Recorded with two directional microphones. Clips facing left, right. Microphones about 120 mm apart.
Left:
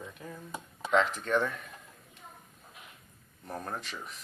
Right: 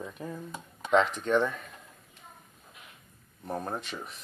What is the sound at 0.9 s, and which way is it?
Speech, 25° right (ahead or behind).